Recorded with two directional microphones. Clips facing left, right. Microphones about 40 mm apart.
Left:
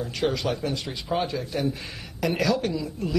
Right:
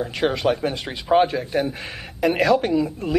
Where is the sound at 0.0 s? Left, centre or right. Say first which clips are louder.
Right 5 dB; right.